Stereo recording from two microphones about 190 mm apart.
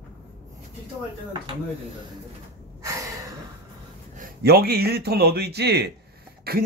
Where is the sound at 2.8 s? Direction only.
15° right (ahead or behind).